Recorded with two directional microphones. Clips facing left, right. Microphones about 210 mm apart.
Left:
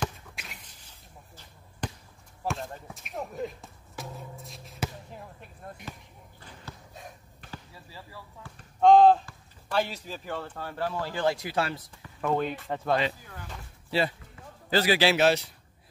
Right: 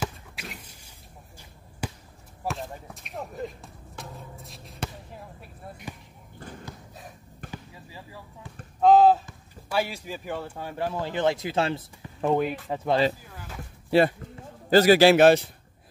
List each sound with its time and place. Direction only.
0.0 s chop: 5° right (ahead or behind)
1.8 s basketball bounce: 10° right (ahead or behind)
5.9 s basketball bounce: 15° right (ahead or behind)
6.4 s a sound: 50° right (ahead or behind)
7.5 s basketball bounce: 15° right (ahead or behind)
8.8 s a sound: 5° right (ahead or behind)
9.7 s speech: 10° right (ahead or behind); by 12.4 s 25° right (ahead or behind)
12.4 s speech: 5° right (ahead or behind)
13.8 s a man's voice: 55° right (ahead or behind)